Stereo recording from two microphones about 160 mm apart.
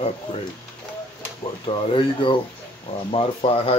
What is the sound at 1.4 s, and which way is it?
Speech, 35° left (ahead or behind).